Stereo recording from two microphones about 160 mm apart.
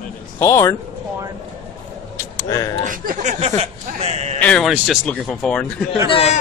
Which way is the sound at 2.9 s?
55° right (ahead or behind).